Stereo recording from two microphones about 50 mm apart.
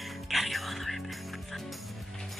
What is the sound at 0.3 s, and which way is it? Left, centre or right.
Music, centre.